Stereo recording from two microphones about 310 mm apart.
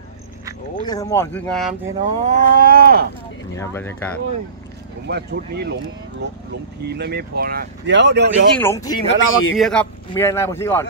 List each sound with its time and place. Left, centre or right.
0.8 s speech: centre
2.0 s speech: right
3.5 s speech: centre
5.0 s speech: right
8.5 s speech: centre
9.2 s speech: left
9.6 s speech: centre